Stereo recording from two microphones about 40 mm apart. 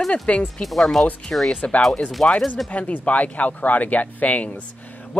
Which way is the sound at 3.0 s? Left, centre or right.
Left.